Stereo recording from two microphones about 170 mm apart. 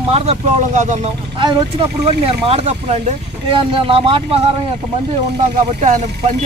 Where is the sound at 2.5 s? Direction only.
40° right (ahead or behind).